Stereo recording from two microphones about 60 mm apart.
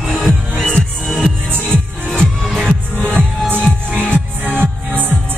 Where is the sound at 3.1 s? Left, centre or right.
Right.